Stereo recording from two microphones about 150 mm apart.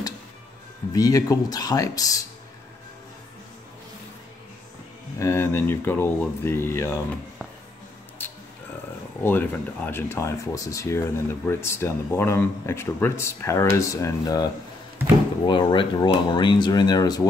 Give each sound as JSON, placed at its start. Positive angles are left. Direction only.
{"t": 0.9, "sound": "speech", "side_deg": 25}
{"t": 5.2, "sound": "speech", "side_deg": 15}
{"t": 8.2, "sound": "a sound", "side_deg": 10}
{"t": 9.2, "sound": "speech", "side_deg": 15}